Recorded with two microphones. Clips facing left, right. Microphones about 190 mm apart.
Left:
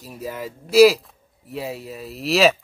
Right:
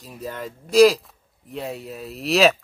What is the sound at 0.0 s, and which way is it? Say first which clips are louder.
Speech: left 1 dB; 10° left (ahead or behind).